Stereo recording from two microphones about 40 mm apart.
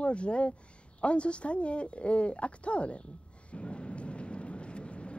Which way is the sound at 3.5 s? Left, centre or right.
Left.